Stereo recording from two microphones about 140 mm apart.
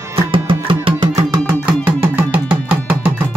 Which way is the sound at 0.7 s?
35° right (ahead or behind).